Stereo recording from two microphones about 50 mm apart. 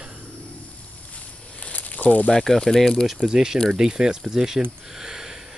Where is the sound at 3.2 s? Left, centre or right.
Centre.